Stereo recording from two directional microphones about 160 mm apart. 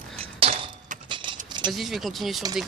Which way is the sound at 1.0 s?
30° right (ahead or behind).